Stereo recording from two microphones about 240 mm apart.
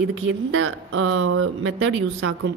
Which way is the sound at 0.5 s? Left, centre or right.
Right.